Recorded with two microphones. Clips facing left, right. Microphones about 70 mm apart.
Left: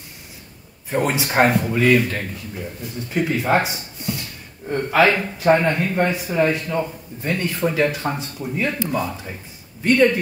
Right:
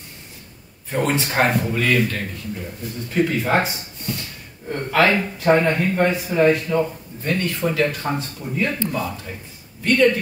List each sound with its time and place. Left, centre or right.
0.8 s a man's voice: centre
7.2 s speech: centre